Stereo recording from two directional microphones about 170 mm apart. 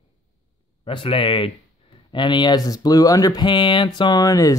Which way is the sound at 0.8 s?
30° left (ahead or behind).